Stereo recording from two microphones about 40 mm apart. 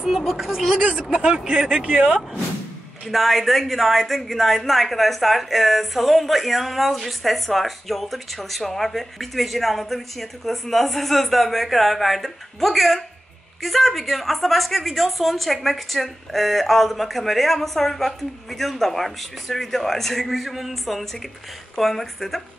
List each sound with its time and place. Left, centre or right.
0.0 s a woman's voice: centre
1.1 s a man's voice: right
3.1 s a woman's voice: centre